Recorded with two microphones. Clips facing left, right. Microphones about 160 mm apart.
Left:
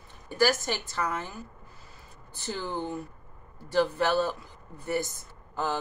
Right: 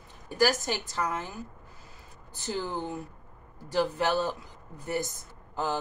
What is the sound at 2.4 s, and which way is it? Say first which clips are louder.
Speech: right 2 dB; 40° right (ahead or behind).